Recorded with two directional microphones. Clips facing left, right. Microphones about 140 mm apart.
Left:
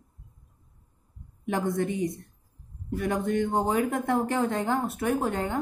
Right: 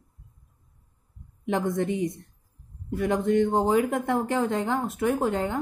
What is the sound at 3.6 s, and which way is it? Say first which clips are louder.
Speech: right 3 dB; 20° right (ahead or behind).